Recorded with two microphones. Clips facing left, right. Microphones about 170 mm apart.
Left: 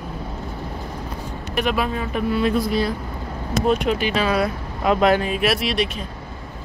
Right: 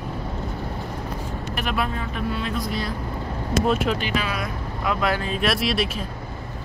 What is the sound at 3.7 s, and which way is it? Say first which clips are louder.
Speech: left 4 dB; centre (ahead or behind).